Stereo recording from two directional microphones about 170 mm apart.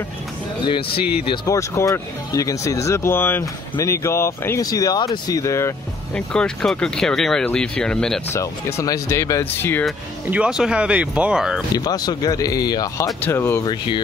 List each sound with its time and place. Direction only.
1.3 s speech: 20° left (ahead or behind)
6.3 s speech: 5° left (ahead or behind)
8.4 s speech: 15° left (ahead or behind)
9.8 s speech: 5° right (ahead or behind)
11.7 s speech: 25° left (ahead or behind)